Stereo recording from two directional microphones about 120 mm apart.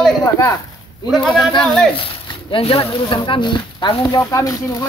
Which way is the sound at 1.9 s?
50° left (ahead or behind).